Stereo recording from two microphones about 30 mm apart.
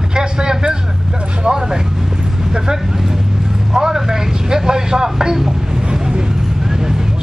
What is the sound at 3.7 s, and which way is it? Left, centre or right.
Vehicle, right.